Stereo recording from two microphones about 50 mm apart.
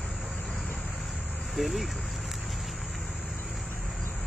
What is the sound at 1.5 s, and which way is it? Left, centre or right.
Vehicle, centre.